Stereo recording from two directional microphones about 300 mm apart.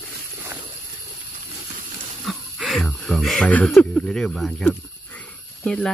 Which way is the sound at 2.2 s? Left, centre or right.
Centre.